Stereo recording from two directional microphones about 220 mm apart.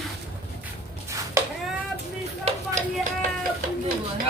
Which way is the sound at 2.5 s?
25° right (ahead or behind).